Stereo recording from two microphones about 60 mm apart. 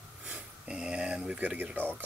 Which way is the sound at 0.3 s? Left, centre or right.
Centre.